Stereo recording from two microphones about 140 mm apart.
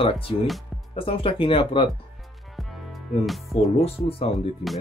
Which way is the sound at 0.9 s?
40° left (ahead or behind).